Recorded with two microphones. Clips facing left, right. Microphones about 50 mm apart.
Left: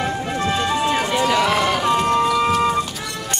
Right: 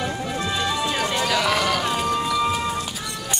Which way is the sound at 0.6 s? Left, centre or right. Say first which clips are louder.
Left 3 dB; left.